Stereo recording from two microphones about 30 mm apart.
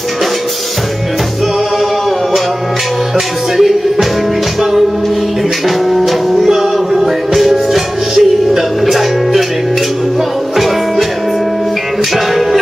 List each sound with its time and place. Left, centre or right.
3.5 s music: centre
5.9 s music: centre